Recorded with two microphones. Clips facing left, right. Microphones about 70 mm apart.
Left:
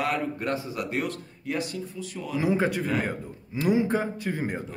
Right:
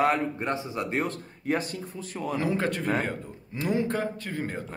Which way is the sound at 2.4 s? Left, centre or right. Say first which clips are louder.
Left 4 dB; centre.